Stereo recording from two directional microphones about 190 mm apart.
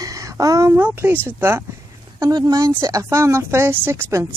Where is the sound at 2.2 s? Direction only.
20° right (ahead or behind).